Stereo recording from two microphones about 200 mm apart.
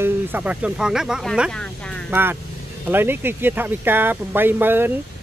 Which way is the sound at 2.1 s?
10° right (ahead or behind).